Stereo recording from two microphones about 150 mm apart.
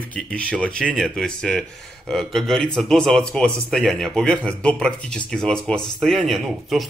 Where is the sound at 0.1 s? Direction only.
10° left (ahead or behind).